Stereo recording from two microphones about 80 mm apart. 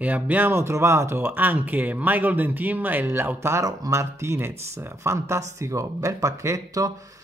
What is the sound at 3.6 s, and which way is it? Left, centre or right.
Speech, right.